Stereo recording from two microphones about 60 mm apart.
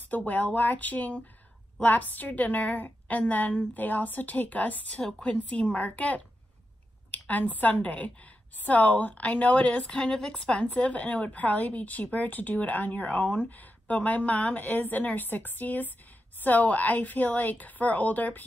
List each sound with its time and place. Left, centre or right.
0.1 s a woman's voice: left
7.2 s a woman's voice: left